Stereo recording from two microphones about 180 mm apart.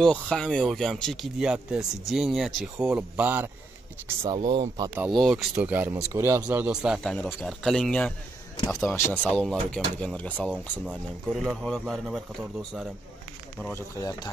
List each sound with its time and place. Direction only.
0.0 s speech: 5° left (ahead or behind)
4.2 s speech: 25° right (ahead or behind)
5.2 s speech: 5° right (ahead or behind)
8.8 s speech: 15° left (ahead or behind)
9.2 s speech: 5° left (ahead or behind)
10.5 s speech: 5° right (ahead or behind)